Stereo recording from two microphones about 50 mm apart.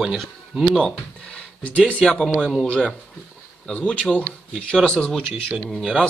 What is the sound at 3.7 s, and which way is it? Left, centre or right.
Speech, left.